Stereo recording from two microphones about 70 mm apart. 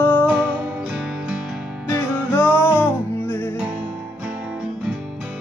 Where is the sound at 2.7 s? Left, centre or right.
Centre.